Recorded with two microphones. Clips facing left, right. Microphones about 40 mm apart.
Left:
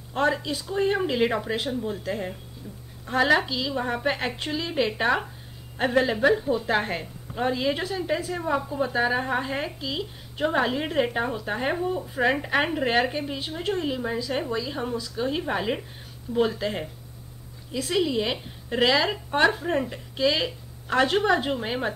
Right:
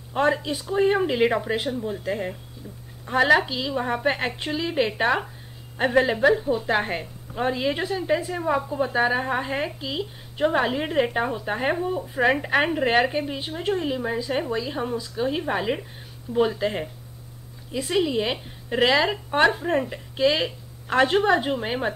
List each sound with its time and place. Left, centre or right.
0.1 s a woman's voice: centre